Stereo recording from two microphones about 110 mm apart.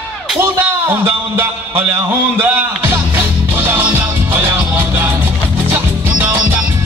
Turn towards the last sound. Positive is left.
turn(degrees=-15)  # may be behind; listen again after turning